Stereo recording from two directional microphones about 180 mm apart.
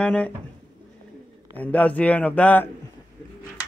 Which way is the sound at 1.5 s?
10° left (ahead or behind).